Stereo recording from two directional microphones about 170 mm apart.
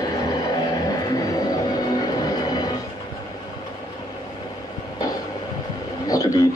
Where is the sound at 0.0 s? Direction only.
25° left (ahead or behind).